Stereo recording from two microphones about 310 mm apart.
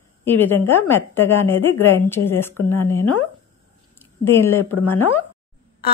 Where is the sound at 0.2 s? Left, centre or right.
Centre.